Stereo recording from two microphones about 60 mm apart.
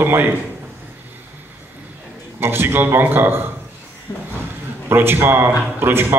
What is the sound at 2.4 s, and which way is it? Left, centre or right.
Speech, right.